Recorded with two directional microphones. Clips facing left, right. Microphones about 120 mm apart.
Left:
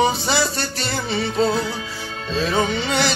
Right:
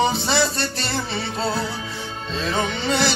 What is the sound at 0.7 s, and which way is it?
Music, 30° right (ahead or behind).